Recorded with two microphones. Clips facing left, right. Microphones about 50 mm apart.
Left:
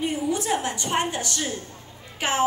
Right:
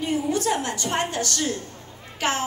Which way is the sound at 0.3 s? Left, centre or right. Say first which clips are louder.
Right 1 dB; centre.